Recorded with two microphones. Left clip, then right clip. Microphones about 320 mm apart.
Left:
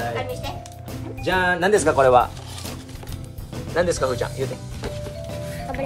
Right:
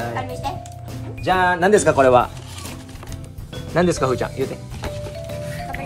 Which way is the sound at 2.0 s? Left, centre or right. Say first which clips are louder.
Even; right.